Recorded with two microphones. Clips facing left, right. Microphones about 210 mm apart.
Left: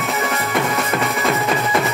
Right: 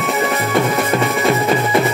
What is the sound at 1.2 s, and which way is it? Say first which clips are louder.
Drum: right 4 dB; 30° right (ahead or behind).